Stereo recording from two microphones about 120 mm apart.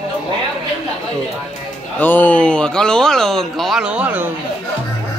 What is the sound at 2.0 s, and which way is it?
A man's voice, 15° left (ahead or behind).